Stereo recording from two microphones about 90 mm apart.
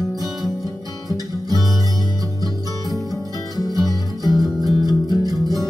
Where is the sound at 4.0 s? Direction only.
45° right (ahead or behind).